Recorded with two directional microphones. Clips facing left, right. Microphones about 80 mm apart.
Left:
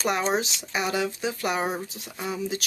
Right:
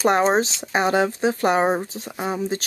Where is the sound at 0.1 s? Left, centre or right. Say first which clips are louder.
Right 7 dB; right.